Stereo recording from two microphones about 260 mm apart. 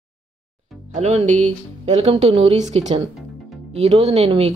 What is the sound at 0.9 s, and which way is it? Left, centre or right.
Speech, right.